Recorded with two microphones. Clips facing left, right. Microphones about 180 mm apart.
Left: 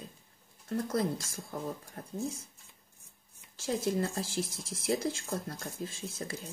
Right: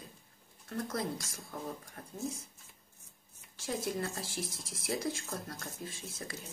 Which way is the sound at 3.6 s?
25° left (ahead or behind).